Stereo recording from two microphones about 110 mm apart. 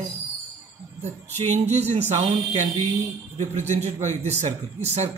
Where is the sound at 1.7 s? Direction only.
75° right (ahead or behind).